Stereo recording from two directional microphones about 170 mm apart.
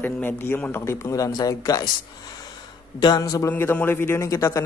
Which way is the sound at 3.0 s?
25° left (ahead or behind).